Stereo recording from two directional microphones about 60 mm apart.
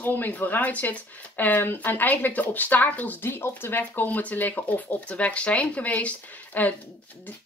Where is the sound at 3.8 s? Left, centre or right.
Left.